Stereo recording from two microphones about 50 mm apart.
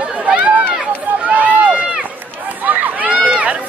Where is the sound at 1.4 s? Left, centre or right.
Right.